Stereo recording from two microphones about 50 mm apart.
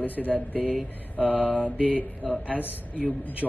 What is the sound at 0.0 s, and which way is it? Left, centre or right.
Speech, left.